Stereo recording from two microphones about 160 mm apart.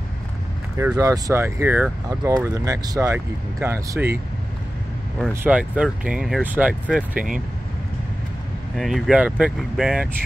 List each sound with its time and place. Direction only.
0.7 s speech: 15° right (ahead or behind)
5.3 s speech: 10° right (ahead or behind)
8.7 s speech: centre (ahead or behind)